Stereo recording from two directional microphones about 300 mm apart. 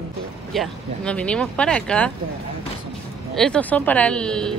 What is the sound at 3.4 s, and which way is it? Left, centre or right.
Speech, centre.